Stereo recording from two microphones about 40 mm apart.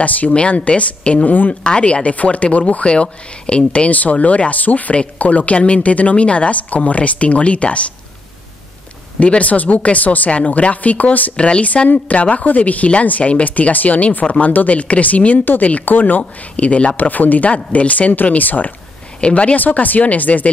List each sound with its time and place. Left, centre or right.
0.0 s speech: left
0.3 s speech: left
3.9 s speech: left
9.2 s speech: left
11.3 s speech: left
16.5 s speech: left
19.2 s speech: left
19.6 s speech: left